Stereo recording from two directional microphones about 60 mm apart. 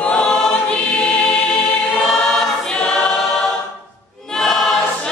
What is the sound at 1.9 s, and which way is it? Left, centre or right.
Choir, centre.